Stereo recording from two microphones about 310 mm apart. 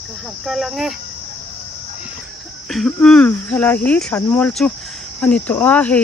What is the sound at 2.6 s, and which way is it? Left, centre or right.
Speech, centre.